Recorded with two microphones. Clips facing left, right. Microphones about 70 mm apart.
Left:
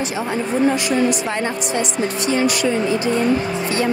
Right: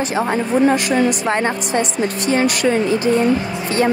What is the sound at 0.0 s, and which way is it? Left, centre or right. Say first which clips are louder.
A woman's voice: right 3 dB; right.